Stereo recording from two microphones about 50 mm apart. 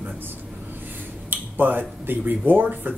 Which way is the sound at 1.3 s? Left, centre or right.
Right.